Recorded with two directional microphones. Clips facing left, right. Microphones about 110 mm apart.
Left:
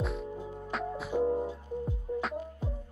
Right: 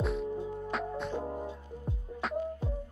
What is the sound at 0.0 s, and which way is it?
Music, centre (ahead or behind).